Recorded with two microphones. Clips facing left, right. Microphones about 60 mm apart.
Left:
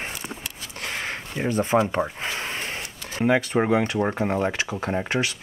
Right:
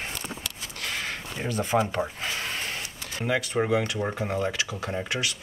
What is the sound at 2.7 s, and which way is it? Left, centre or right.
Speech, left.